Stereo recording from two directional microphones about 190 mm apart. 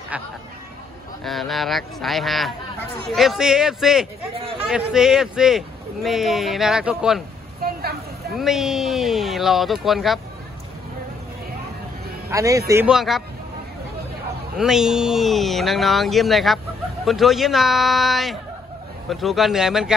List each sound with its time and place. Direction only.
1.2 s speech: centre (ahead or behind)
8.4 s speech: centre (ahead or behind)
12.3 s a man's voice: 15° right (ahead or behind)
12.8 s speech: centre (ahead or behind)
14.6 s speech: 5° right (ahead or behind)